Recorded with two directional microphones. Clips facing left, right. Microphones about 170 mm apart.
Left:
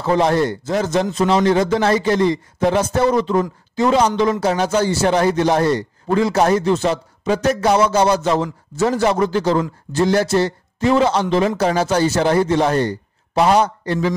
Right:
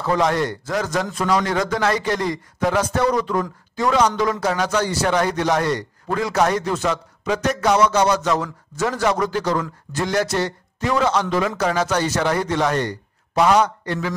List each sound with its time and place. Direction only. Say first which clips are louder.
0.0 s a man's voice: left 3 dB; 30° left (ahead or behind)